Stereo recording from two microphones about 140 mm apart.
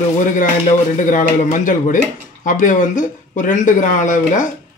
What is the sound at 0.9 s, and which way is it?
Speech, 65° left (ahead or behind).